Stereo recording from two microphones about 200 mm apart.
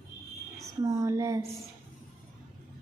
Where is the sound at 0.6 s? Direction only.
15° right (ahead or behind).